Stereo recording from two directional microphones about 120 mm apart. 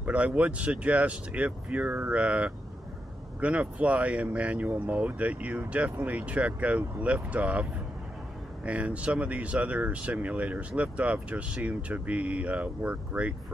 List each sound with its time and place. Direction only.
0.0 s speech: 10° right (ahead or behind)
8.6 s speech: 10° right (ahead or behind)